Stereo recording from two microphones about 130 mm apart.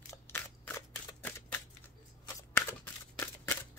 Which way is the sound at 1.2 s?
15° left (ahead or behind).